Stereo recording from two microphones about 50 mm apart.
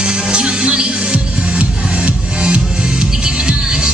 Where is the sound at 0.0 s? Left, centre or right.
Centre.